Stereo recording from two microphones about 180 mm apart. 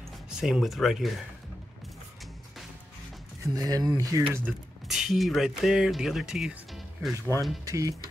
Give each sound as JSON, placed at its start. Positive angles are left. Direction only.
{"t": 0.3, "sound": "speech", "side_deg": -5}
{"t": 3.5, "sound": "speech", "side_deg": -20}
{"t": 4.8, "sound": "speech", "side_deg": 0}
{"t": 7.6, "sound": "speech", "side_deg": -20}